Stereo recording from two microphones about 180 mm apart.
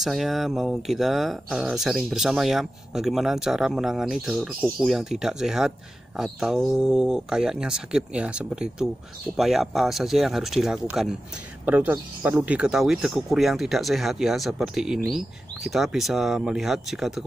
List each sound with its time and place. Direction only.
0.0 s speech: centre (ahead or behind)